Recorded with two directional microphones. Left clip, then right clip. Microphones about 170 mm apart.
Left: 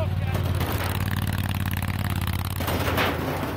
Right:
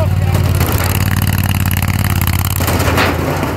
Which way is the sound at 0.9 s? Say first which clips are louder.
Right 11 dB; 10° right (ahead or behind).